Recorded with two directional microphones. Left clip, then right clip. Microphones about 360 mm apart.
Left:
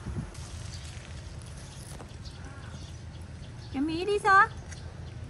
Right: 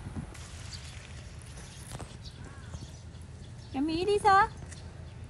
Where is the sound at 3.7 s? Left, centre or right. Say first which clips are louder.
Even; right.